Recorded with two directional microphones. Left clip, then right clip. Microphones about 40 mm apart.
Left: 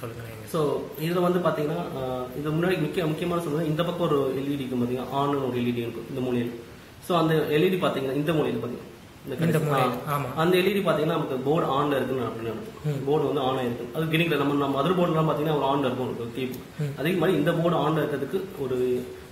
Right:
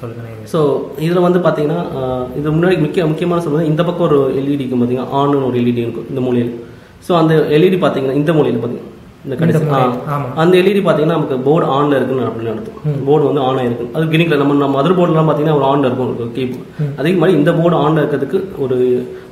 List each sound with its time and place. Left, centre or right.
0.5 s a man's voice: centre
9.5 s speech: left
10.3 s a man's voice: centre
13.1 s a man's voice: centre
17.0 s a man's voice: centre